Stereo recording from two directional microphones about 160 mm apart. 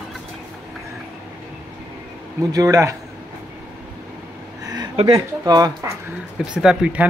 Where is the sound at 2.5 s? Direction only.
20° right (ahead or behind).